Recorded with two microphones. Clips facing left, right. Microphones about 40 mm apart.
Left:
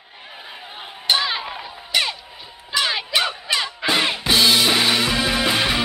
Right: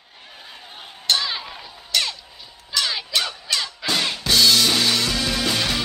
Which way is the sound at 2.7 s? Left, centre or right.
Left.